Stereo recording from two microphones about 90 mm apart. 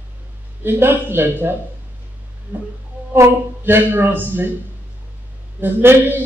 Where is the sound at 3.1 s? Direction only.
25° right (ahead or behind).